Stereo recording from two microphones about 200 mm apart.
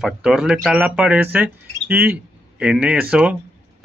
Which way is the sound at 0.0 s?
Centre (ahead or behind).